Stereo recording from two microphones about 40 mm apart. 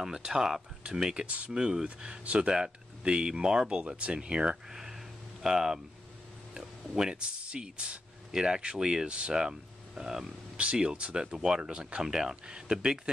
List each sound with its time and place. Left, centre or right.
0.0 s speech: centre
1.2 s speech: right
1.5 s speech: right
2.2 s speech: right
4.6 s speech: centre
11.3 s speech: centre